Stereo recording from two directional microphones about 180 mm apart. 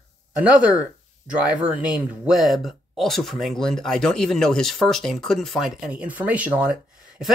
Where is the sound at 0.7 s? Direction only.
5° right (ahead or behind).